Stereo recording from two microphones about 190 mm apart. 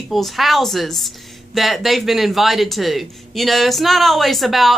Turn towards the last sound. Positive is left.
turn(degrees=0)  # may be behind; listen again after turning